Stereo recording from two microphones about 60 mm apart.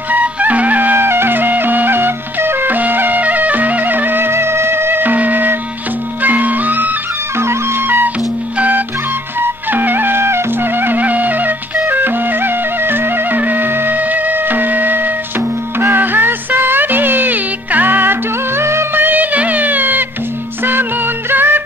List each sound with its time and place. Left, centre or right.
0.1 s music: right
7.3 s music: right
8.5 s music: right
18.6 s music: right
18.9 s music: right
21.3 s music: right